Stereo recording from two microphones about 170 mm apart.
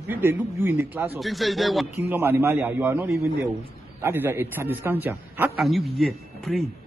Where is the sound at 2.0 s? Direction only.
10° right (ahead or behind).